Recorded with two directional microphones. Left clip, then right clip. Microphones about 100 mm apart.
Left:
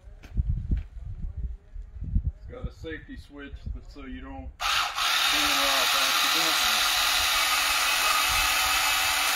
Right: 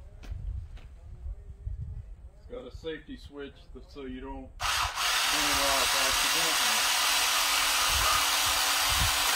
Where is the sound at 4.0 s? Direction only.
25° right (ahead or behind).